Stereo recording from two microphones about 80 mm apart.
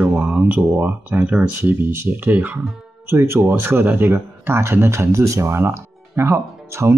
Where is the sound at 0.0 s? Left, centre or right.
Centre.